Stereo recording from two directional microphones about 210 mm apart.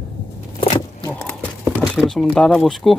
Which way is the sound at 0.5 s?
20° left (ahead or behind).